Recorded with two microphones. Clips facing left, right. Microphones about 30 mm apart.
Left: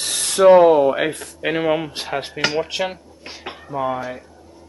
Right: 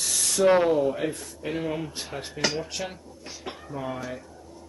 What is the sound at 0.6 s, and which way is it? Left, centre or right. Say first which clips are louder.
Speech: left 10 dB; left.